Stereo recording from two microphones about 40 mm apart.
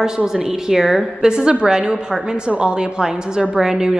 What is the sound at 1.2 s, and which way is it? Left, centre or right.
A woman's voice, centre.